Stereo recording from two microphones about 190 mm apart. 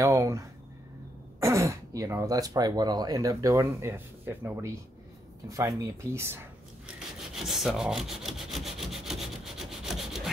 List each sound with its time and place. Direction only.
0.0 s speech: 15° right (ahead or behind)
6.9 s rub: centre (ahead or behind)